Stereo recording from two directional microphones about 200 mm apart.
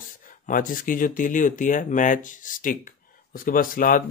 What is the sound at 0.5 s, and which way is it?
Speech, 45° left (ahead or behind).